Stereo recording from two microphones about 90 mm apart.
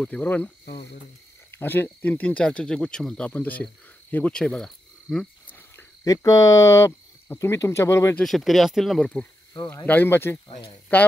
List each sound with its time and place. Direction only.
0.0 s speech: 15° left (ahead or behind)
1.5 s speech: 25° left (ahead or behind); by 3.3 s 10° left (ahead or behind)
3.3 s speech: 20° left (ahead or behind)
6.0 s speech: 40° left (ahead or behind)
8.2 s speech: centre (ahead or behind)
9.8 s speech: 20° left (ahead or behind)